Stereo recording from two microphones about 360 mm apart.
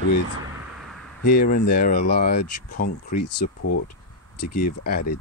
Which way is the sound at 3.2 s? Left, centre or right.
Left.